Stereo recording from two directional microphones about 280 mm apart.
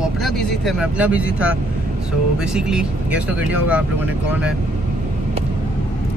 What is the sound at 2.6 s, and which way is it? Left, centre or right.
Speech, centre.